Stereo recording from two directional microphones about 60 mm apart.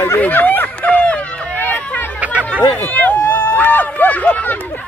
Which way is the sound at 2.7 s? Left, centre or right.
Left.